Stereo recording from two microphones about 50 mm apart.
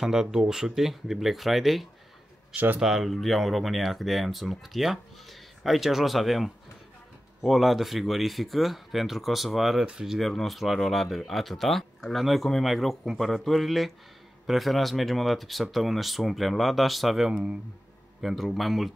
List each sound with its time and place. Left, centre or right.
0.0 s speech: centre
10.1 s speech: centre
17.3 s speech: centre
18.2 s speech: centre